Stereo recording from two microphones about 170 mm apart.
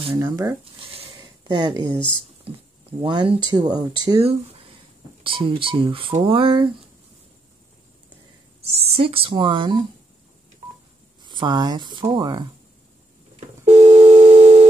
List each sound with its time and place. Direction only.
0.0 s speech: 30° right (ahead or behind)
1.4 s speech: 25° right (ahead or behind)
8.6 s speech: 35° right (ahead or behind)
11.2 s speech: 25° right (ahead or behind)
13.7 s busy signal: 40° right (ahead or behind)